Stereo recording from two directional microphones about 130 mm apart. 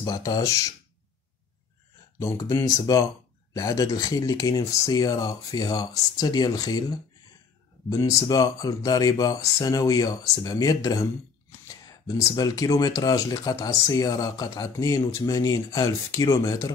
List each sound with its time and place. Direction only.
0.0 s speech: 30° left (ahead or behind)
2.1 s speech: 25° left (ahead or behind)